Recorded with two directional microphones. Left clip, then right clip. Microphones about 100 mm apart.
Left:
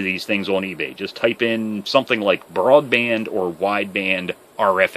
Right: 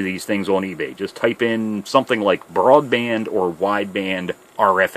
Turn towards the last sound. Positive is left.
turn(degrees=-50)  # may be behind; listen again after turning